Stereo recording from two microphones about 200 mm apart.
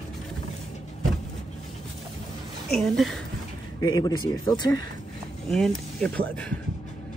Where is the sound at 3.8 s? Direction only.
20° left (ahead or behind).